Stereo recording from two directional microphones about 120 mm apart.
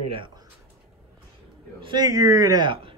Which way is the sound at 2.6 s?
45° right (ahead or behind).